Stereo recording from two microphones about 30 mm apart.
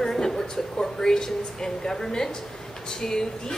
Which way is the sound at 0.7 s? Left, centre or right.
Left.